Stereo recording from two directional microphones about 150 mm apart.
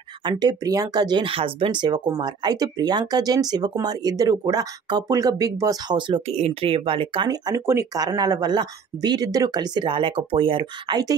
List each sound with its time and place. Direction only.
0.2 s speech: 30° right (ahead or behind)